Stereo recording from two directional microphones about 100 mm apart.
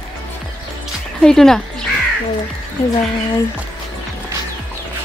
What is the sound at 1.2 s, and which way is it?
Speech, 5° left (ahead or behind).